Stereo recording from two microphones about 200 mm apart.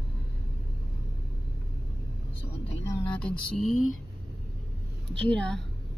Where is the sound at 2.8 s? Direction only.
5° left (ahead or behind).